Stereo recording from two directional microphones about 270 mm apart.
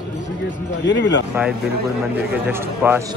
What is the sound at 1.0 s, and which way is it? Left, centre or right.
Speech, left.